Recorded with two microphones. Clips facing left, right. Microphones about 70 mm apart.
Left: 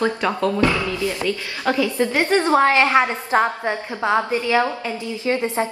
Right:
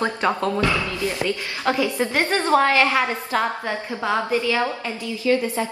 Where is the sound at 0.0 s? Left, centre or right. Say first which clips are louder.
Left 1 dB; right.